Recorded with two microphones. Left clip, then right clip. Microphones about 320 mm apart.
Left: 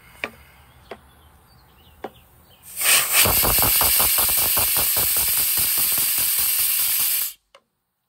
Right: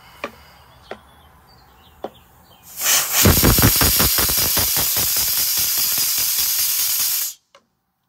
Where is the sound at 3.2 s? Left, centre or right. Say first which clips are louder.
Right 5 dB; right.